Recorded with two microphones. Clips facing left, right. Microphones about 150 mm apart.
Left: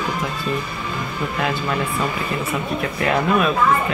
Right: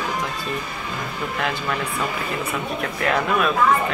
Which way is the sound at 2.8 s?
5° left (ahead or behind).